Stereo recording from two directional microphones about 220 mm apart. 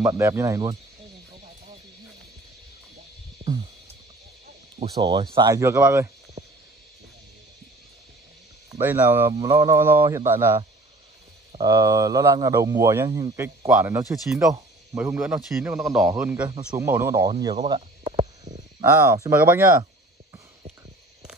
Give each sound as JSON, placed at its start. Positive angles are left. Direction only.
{"t": 0.0, "sound": "speech", "side_deg": -15}
{"t": 3.4, "sound": "music", "side_deg": -25}
{"t": 4.9, "sound": "speech", "side_deg": -20}
{"t": 8.6, "sound": "speech", "side_deg": -10}
{"t": 17.6, "sound": "speech", "side_deg": -25}